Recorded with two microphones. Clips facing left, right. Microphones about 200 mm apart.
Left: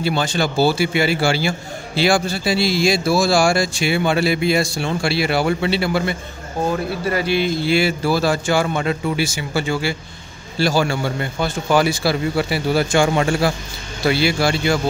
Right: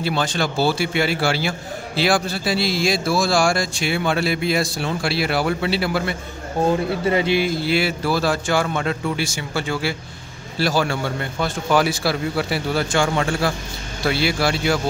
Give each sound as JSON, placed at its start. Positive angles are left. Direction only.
{"t": 0.0, "sound": "a man's voice", "side_deg": 0}
{"t": 6.7, "sound": "speech", "side_deg": -20}
{"t": 7.4, "sound": "a man's voice", "side_deg": -5}
{"t": 12.9, "sound": "a man's voice", "side_deg": 15}
{"t": 14.0, "sound": "a man's voice", "side_deg": 0}